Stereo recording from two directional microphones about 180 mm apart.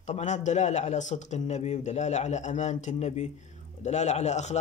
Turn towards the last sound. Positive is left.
turn(degrees=40)  # may be behind; listen again after turning